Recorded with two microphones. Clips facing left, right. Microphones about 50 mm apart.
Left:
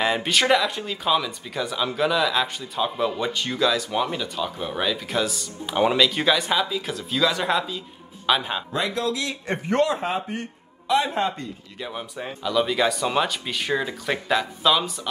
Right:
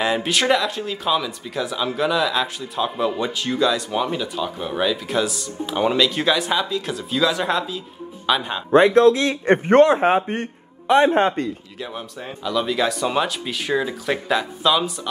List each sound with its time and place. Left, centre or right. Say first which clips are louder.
0.0 s speech: right 1 dB; centre
8.7 s a man's voice: right 14 dB; right
11.8 s speech: even; centre